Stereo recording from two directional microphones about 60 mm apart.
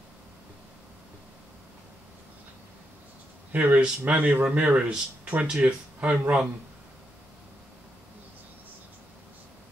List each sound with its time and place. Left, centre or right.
3.5 s speech: right